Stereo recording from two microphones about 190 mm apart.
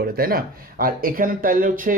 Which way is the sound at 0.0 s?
50° right (ahead or behind).